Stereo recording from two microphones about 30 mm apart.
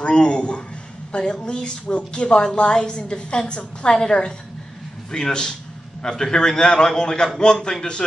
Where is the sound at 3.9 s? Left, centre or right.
Left.